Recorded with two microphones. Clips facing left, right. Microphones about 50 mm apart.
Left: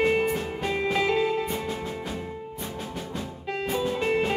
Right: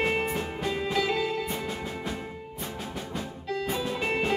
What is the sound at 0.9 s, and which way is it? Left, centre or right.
Music, left.